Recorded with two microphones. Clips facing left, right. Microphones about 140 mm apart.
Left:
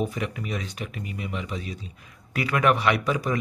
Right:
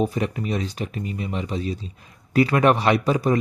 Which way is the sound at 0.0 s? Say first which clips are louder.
Right 5 dB; 35° right (ahead or behind).